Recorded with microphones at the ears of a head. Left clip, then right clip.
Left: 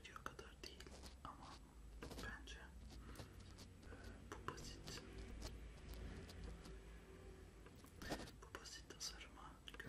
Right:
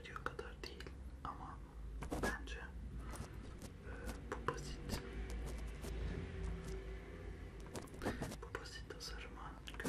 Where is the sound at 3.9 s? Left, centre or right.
Right.